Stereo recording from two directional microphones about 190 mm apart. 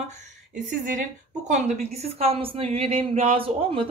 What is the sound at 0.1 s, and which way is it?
A woman's voice, 40° right (ahead or behind).